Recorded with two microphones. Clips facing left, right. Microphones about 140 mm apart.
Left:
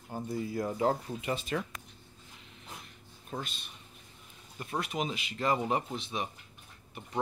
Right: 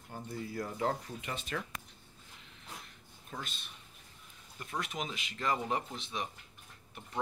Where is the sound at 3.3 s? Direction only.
35° left (ahead or behind).